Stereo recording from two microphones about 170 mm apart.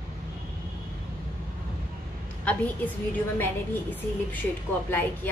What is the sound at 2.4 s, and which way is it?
Speech, 10° left (ahead or behind).